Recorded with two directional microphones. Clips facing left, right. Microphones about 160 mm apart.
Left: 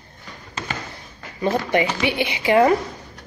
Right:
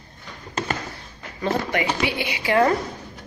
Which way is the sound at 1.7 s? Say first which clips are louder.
Left 3 dB; 25° left (ahead or behind).